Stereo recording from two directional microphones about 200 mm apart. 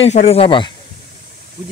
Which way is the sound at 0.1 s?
30° left (ahead or behind).